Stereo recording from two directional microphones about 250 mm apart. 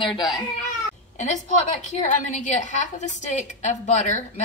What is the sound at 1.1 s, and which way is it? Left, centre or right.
A woman's voice, left.